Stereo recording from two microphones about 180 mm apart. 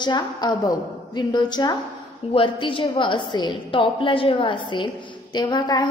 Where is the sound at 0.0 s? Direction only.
25° left (ahead or behind).